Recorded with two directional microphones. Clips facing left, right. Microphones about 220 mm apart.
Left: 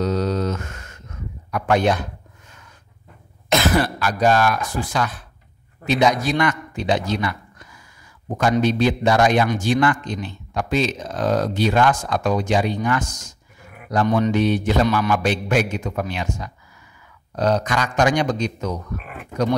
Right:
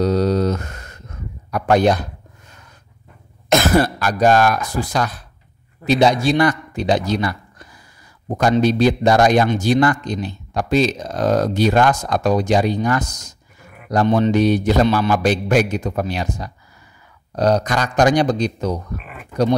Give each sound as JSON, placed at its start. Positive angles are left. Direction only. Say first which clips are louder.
{"t": 0.0, "sound": "a sound", "louder": "right 5 dB", "side_deg": -35}
{"t": 1.5, "sound": "speech", "louder": "right 3 dB", "side_deg": -40}
{"t": 3.4, "sound": "a man's voice", "louder": "right 4 dB", "side_deg": -45}
{"t": 14.0, "sound": "mantra", "louder": "right 3 dB", "side_deg": -25}
{"t": 14.3, "sound": "speech", "louder": "right 3 dB", "side_deg": -40}